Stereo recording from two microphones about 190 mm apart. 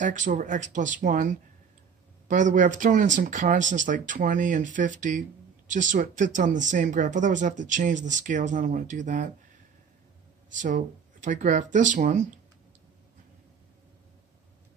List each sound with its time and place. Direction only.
0.0 s speech: 40° right (ahead or behind)
10.6 s speech: 40° right (ahead or behind)